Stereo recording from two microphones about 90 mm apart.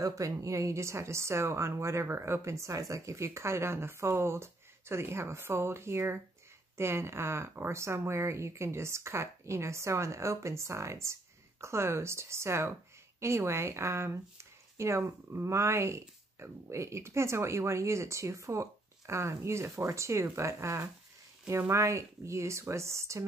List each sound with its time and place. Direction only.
0.0 s speech: 40° right (ahead or behind)